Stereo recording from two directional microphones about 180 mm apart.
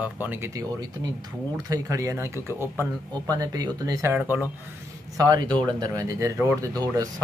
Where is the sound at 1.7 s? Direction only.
15° right (ahead or behind).